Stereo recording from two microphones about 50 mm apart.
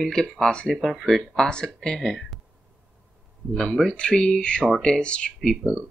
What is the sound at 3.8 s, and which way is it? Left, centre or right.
Speech, centre.